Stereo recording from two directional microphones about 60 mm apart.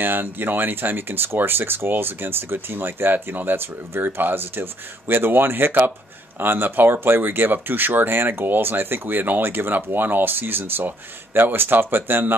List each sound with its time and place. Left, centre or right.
0.0 s speech: right